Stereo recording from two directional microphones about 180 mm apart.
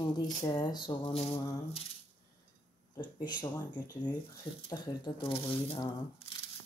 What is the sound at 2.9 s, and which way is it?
Speech, 25° left (ahead or behind).